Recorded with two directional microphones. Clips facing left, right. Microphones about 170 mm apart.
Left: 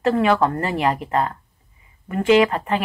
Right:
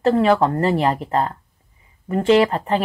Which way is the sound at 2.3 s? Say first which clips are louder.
Right 1 dB; 30° right (ahead or behind).